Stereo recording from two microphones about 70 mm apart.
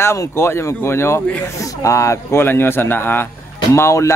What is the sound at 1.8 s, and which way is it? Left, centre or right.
Speech, left.